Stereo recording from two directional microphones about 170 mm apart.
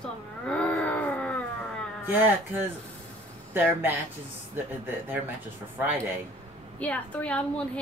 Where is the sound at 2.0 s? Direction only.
10° right (ahead or behind).